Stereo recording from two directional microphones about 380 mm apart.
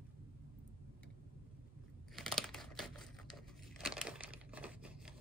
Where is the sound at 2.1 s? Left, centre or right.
Centre.